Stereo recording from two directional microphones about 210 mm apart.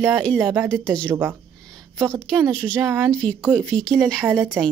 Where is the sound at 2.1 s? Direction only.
5° left (ahead or behind).